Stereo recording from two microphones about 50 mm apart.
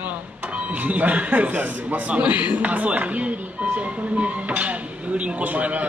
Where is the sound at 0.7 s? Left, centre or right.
Right.